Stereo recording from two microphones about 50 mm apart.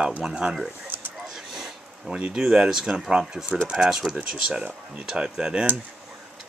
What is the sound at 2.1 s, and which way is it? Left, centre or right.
Speech, centre.